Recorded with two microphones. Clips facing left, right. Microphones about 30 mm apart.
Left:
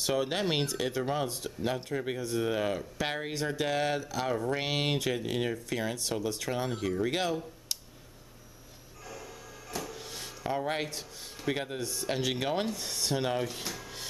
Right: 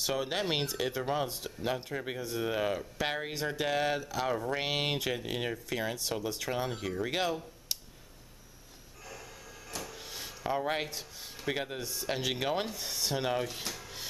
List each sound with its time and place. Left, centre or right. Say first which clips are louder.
0.0 s speech: left 3 dB; centre
9.0 s speech: left 3 dB; centre